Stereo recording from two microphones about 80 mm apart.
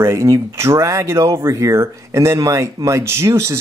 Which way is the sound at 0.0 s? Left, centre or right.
Right.